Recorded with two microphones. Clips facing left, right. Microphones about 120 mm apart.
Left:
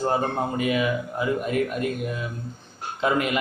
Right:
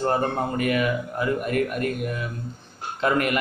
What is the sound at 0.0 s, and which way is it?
A man's voice, 5° left (ahead or behind).